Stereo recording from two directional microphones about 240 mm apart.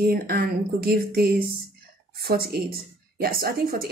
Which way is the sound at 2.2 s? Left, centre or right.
Right.